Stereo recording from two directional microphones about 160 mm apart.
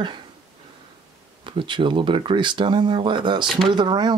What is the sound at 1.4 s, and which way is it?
Speech, 30° right (ahead or behind).